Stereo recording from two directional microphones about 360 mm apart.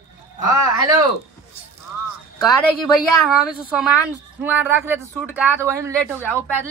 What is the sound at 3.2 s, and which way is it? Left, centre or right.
A man's voice, centre.